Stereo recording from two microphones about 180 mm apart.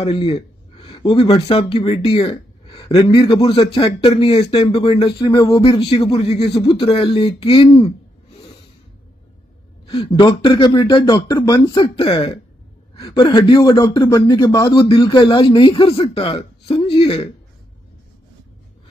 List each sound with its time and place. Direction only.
0.0 s speech: 30° left (ahead or behind)
9.8 s speech: 30° left (ahead or behind)
11.1 s speech: 15° left (ahead or behind)
11.6 s speech: 30° left (ahead or behind)